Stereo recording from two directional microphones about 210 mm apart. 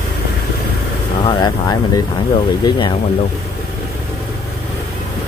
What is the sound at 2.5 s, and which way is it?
Speech, 20° left (ahead or behind).